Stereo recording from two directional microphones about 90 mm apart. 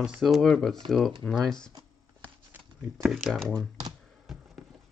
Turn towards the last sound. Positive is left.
turn(degrees=0)  # may be behind; listen again after turning